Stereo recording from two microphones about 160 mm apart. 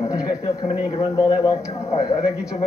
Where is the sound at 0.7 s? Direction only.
25° left (ahead or behind).